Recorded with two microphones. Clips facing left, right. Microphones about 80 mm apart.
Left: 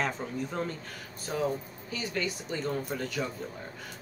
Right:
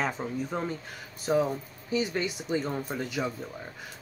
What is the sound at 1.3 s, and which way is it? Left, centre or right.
Speech, right.